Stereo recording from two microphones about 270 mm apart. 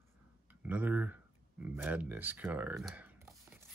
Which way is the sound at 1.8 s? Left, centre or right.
Centre.